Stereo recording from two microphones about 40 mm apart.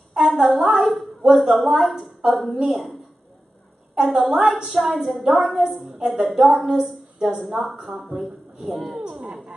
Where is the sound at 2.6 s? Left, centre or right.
Centre.